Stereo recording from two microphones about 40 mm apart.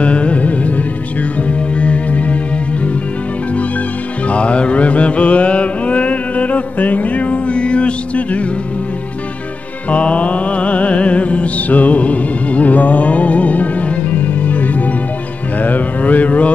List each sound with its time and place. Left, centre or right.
0.0 s music: left
4.3 s mantra: left
9.8 s music: left
15.6 s a sound: left